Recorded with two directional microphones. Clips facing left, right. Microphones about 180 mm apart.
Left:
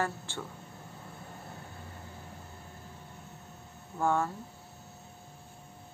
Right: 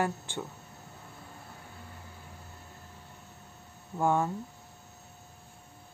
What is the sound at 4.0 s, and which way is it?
Speech, 15° right (ahead or behind).